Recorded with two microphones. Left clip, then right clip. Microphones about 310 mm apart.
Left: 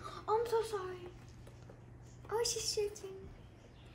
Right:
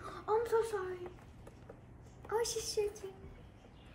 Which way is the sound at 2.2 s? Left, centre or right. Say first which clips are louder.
Even; centre.